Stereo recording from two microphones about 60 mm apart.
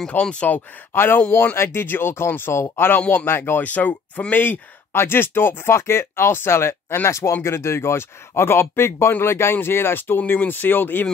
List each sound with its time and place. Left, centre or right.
0.2 s speech: centre
0.9 s speech: left
3.6 s speech: left